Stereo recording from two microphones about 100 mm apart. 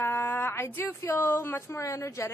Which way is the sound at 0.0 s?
20° left (ahead or behind).